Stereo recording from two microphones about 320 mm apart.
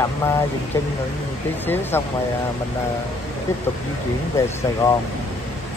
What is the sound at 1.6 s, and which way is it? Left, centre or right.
Speech, centre.